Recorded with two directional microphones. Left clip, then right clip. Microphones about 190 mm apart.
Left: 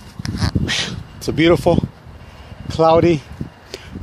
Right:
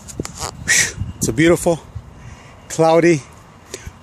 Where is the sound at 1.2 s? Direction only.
5° right (ahead or behind).